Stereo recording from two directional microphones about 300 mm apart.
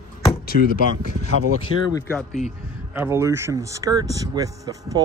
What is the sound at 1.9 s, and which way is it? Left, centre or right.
Speech, centre.